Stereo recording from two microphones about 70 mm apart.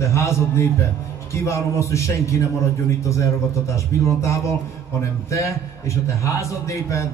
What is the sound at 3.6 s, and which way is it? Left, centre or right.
A man's voice, left.